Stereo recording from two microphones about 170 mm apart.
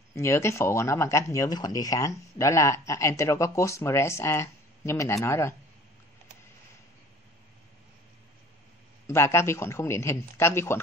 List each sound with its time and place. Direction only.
0.1 s speech: 15° left (ahead or behind)
9.0 s speech: 15° left (ahead or behind)